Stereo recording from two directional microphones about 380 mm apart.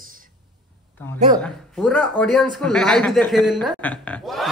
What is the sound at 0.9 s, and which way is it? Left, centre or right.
A woman's voice, centre.